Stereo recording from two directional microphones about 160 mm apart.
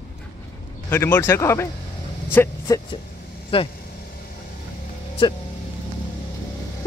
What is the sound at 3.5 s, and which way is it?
Speech, 35° left (ahead or behind).